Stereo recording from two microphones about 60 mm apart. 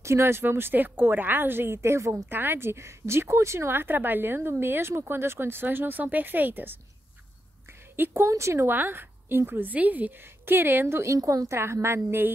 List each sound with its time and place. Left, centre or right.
0.0 s speech: right
1.8 s a woman's voice: right
2.2 s speech: right
7.9 s a woman's voice: right
8.3 s speech: right
8.6 s speech: right
11.1 s a woman's voice: right